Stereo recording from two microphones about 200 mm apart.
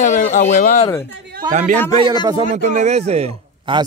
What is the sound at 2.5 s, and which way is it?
Speech, 35° right (ahead or behind).